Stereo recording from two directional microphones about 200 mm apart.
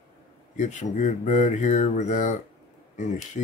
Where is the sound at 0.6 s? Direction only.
35° left (ahead or behind).